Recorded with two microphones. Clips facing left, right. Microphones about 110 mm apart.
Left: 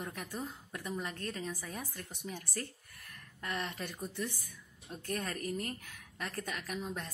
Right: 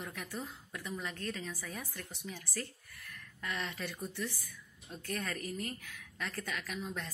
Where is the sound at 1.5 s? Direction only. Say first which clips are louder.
Left 1 dB; 15° left (ahead or behind).